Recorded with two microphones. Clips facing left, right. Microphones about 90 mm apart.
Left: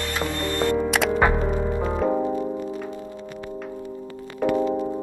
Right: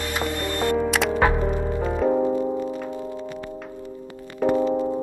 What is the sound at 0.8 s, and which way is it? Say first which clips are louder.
Music: even; centre (ahead or behind).